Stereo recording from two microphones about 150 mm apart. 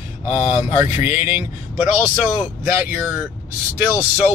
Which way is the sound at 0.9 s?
45° left (ahead or behind).